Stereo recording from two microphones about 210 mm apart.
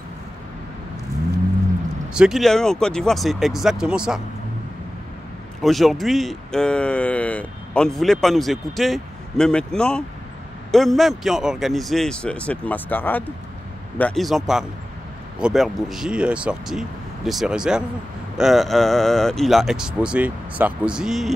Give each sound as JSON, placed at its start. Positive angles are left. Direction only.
{"t": 2.1, "sound": "speech", "side_deg": 0}
{"t": 5.6, "sound": "speech", "side_deg": 0}